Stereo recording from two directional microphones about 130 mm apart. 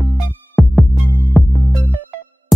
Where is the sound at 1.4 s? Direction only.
Centre (ahead or behind).